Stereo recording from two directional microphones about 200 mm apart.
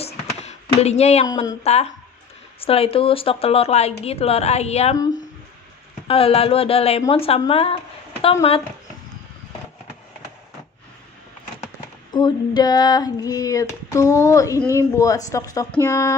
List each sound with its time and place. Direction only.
0.4 s a sound: 35° left (ahead or behind)
1.2 s speech: 20° left (ahead or behind)
1.6 s speech: 30° left (ahead or behind)
6.0 s speech: 30° left (ahead or behind)
12.1 s female singing: 20° left (ahead or behind)